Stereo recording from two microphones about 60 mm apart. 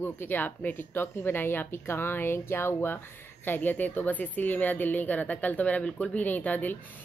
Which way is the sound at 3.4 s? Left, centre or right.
Left.